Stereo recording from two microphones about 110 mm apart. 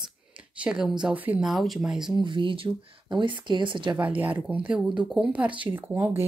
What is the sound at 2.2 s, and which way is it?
Speech, 50° right (ahead or behind).